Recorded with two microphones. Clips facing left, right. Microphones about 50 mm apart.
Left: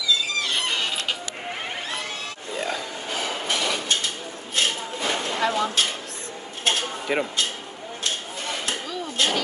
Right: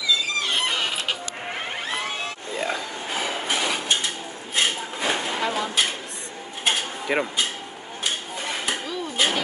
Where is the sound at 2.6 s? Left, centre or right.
Centre.